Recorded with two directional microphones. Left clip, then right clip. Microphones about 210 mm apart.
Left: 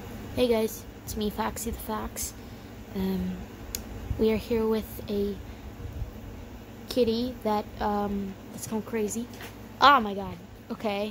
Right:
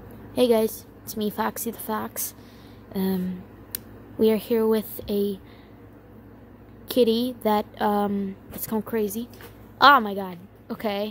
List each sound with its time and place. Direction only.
0.4 s a woman's voice: 15° right (ahead or behind)
2.9 s a sound: 15° right (ahead or behind)
3.7 s speech: 15° right (ahead or behind)
6.9 s a woman's voice: 20° right (ahead or behind)